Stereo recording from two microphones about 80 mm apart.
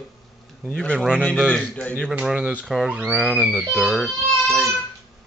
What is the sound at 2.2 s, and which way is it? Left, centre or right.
Speech, centre.